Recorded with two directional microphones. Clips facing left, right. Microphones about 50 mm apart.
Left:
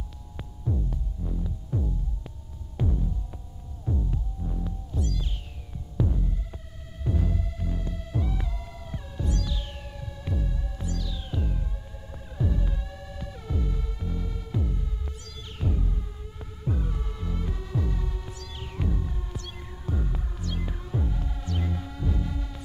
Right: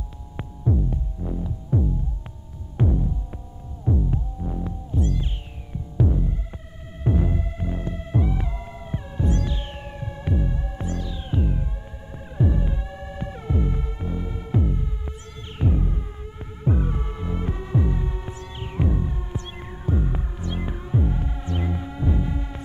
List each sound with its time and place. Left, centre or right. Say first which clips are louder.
0.4 s throbbing: right 7 dB; right
3.8 s music: right 7 dB; right